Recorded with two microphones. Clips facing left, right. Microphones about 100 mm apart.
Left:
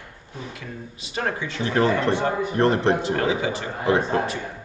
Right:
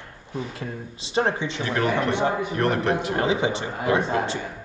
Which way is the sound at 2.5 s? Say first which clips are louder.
Left 3 dB; 30° left (ahead or behind).